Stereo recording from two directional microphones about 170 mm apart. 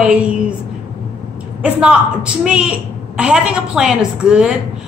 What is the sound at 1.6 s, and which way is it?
Speech, 5° right (ahead or behind).